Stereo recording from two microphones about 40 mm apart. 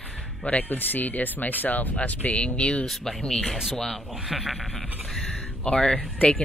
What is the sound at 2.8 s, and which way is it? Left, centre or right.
Speech, centre.